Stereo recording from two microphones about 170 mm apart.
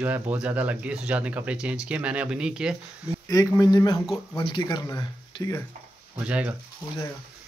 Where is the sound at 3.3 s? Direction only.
20° left (ahead or behind).